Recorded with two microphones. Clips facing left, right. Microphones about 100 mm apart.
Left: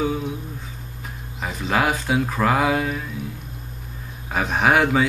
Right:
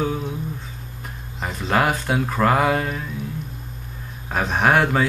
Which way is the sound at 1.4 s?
Centre (ahead or behind).